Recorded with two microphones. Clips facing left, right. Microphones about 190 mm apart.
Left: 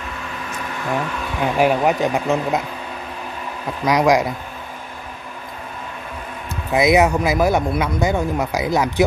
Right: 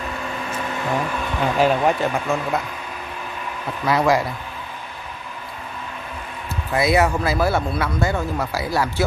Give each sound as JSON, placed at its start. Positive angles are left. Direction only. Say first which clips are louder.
{"t": 1.4, "sound": "speech", "louder": "left 1 dB", "side_deg": 10}
{"t": 3.8, "sound": "speech", "louder": "left 3 dB", "side_deg": 15}
{"t": 6.7, "sound": "speech", "louder": "left 3 dB", "side_deg": 15}